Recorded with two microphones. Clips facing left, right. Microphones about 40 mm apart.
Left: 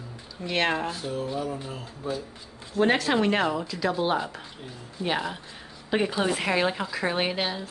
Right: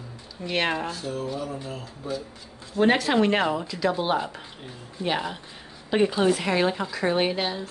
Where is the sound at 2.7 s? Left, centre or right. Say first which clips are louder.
Right 2 dB; centre.